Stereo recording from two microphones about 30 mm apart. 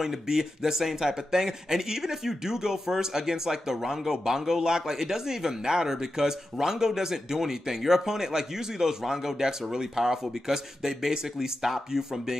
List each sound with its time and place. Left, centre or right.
0.0 s speech: centre